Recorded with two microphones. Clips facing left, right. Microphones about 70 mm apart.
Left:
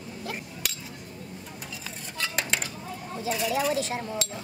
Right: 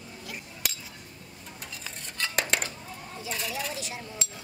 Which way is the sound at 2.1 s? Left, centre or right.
Centre.